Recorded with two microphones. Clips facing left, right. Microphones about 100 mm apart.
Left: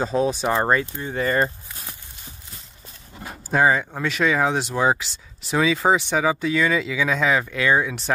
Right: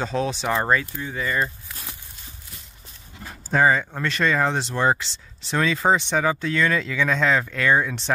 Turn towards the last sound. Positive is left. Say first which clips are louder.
# even
turn(degrees=5)  # may be behind; listen again after turning